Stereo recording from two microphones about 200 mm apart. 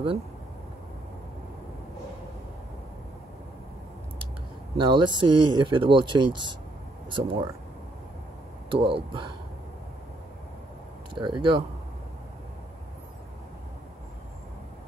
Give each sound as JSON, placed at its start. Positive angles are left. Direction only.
{"t": 4.7, "sound": "speech", "side_deg": -20}
{"t": 8.6, "sound": "speech", "side_deg": -25}
{"t": 11.1, "sound": "speech", "side_deg": -25}